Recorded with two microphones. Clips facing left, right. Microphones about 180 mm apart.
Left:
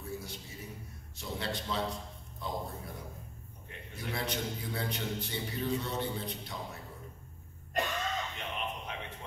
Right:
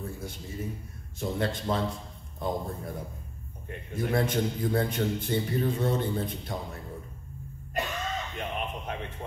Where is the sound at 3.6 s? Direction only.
50° right (ahead or behind).